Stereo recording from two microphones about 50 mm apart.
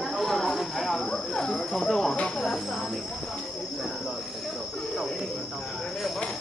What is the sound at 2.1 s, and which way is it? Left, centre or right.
Cricket, left.